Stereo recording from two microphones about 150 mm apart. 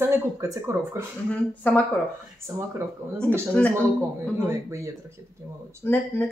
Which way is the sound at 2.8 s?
15° right (ahead or behind).